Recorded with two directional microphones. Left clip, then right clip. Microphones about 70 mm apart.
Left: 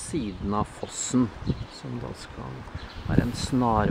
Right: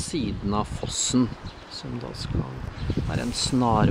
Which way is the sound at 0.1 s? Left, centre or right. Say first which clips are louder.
Right 1 dB; centre.